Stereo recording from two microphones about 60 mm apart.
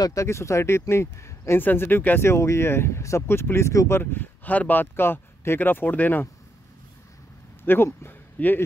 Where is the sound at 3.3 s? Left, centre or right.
Left.